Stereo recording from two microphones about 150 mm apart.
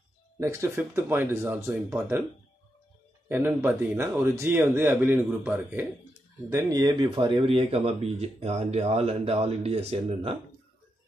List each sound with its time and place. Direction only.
0.4 s a man's voice: 20° right (ahead or behind)
3.3 s a man's voice: 15° right (ahead or behind)
6.5 s speech: 25° right (ahead or behind); by 10.3 s 45° right (ahead or behind)